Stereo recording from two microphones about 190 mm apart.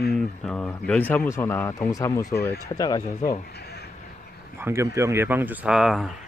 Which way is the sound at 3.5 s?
55° left (ahead or behind).